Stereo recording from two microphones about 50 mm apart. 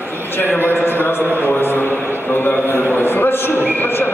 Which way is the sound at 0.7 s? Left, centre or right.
Left.